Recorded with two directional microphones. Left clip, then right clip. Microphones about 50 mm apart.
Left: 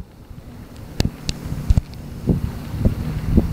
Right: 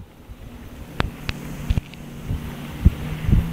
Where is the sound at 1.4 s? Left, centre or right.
Centre.